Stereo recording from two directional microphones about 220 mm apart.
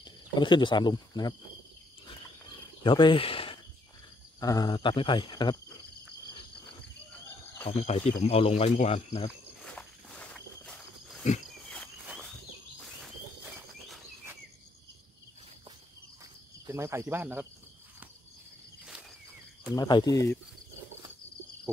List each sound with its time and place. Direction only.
0.0 s speech: 20° left (ahead or behind)
2.8 s speech: 20° left (ahead or behind)
7.7 s speech: 30° left (ahead or behind)
9.6 s wild animals: 5° left (ahead or behind)
11.7 s a sound: 5° left (ahead or behind)
16.6 s speech: 10° right (ahead or behind)
19.7 s speech: 20° left (ahead or behind)